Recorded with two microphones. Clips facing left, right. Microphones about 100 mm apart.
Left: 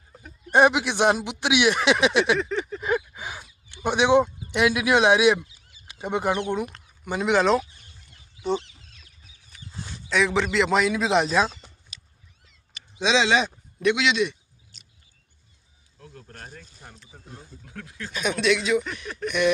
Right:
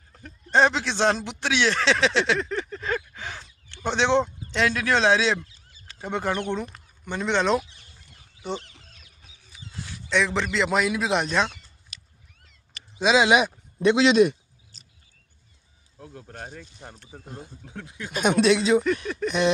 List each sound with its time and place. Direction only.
0.1 s a man's voice: 10° left (ahead or behind)
10.0 s a man's voice: centre (ahead or behind)
11.9 s cat: centre (ahead or behind)
13.0 s speech: 10° right (ahead or behind)
13.7 s a sound: 30° right (ahead or behind)
16.0 s speech: 20° right (ahead or behind)
17.6 s speech: 20° right (ahead or behind)
18.1 s speech: 45° right (ahead or behind)